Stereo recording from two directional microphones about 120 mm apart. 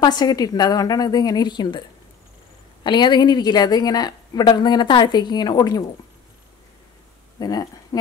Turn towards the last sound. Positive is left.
turn(degrees=30)  # may be behind; listen again after turning